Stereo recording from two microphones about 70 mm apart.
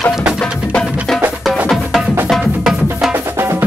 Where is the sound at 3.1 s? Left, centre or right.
Right.